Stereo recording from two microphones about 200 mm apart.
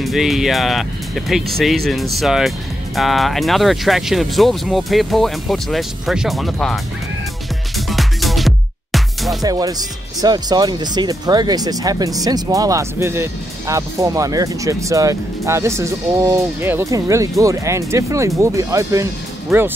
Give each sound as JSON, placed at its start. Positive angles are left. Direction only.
{"t": 0.0, "sound": "speech", "side_deg": 0}
{"t": 7.7, "sound": "music", "side_deg": 0}
{"t": 9.4, "sound": "speech", "side_deg": -20}